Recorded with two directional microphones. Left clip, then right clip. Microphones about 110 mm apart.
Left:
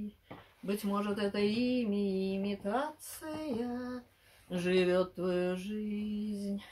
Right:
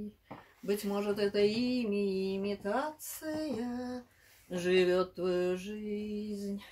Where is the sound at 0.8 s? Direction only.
20° left (ahead or behind).